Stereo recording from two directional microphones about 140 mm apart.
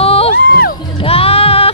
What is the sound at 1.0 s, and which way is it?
Music, 45° left (ahead or behind).